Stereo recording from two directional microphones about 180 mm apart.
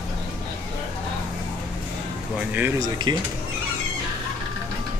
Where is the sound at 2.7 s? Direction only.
20° right (ahead or behind).